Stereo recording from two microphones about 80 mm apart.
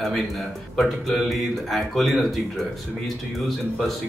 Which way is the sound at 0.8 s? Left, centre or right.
Centre.